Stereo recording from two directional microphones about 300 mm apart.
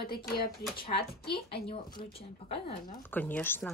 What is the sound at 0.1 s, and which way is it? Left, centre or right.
Speech, left.